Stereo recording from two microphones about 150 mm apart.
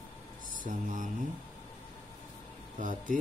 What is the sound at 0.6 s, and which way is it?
Speech, 60° right (ahead or behind).